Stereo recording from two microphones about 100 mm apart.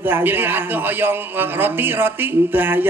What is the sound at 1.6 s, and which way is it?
A man's voice, 20° right (ahead or behind).